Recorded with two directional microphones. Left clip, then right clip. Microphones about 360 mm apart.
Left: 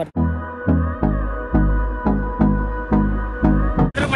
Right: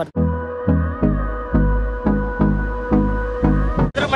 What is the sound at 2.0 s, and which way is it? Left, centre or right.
Music, centre.